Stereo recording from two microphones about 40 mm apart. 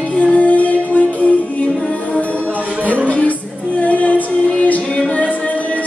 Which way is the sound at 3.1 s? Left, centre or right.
Left.